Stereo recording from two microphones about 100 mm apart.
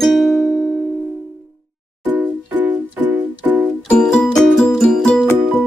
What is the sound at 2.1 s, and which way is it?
Music, 15° right (ahead or behind).